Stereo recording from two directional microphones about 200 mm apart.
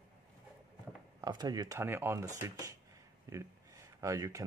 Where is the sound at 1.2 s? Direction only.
20° right (ahead or behind).